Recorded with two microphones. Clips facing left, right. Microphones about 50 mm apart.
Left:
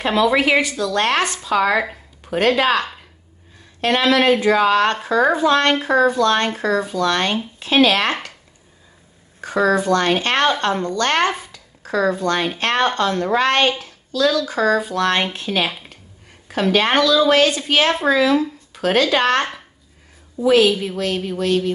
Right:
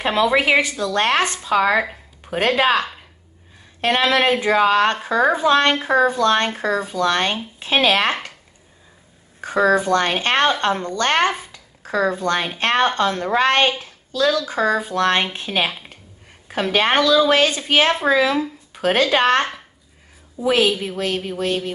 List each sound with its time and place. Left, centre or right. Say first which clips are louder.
0.0 s a woman's voice: left 1 dB; centre
5.7 s speech: left 1 dB; centre
6.0 s a woman's voice: left 1 dB; right
9.4 s a woman's voice: right 1 dB; right
20.4 s a woman's voice: left 3 dB; centre